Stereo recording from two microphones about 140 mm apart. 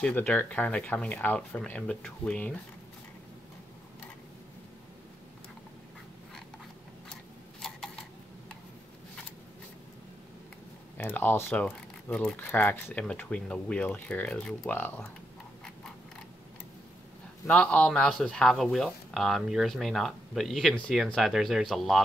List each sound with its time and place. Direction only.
0.0 s speech: 10° left (ahead or behind)
7.6 s a sound: 5° left (ahead or behind)
11.0 s speech: 15° left (ahead or behind)
17.5 s speech: 10° left (ahead or behind)